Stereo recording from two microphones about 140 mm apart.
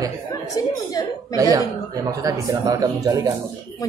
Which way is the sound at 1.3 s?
25° right (ahead or behind).